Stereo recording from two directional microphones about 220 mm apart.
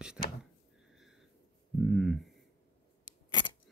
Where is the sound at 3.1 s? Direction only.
20° left (ahead or behind).